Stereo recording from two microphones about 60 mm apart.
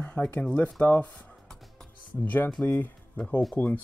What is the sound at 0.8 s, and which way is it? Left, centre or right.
Speech, left.